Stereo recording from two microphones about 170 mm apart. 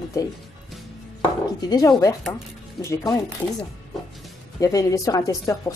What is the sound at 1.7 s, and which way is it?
A woman's voice, 20° left (ahead or behind).